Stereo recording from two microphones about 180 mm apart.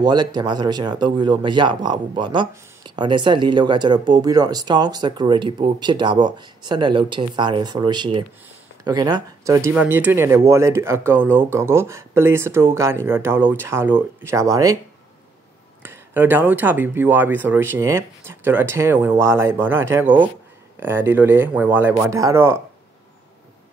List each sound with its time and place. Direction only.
0.0 s speech: 20° right (ahead or behind)
15.8 s speech: 10° right (ahead or behind)